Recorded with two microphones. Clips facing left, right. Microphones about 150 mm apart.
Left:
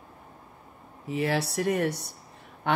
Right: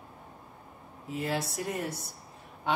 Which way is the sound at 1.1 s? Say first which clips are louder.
Left 5 dB; 75° left (ahead or behind).